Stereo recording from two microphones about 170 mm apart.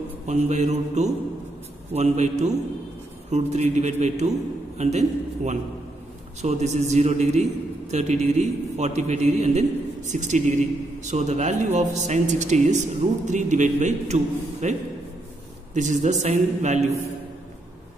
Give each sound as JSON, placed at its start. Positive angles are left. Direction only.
{"t": 0.3, "sound": "a man's voice", "side_deg": -40}